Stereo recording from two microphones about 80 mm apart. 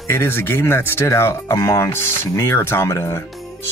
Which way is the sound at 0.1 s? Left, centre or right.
Left.